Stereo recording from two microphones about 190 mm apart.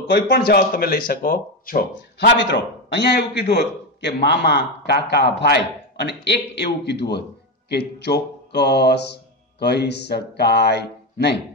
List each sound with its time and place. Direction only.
0.1 s a man's voice: 55° left (ahead or behind)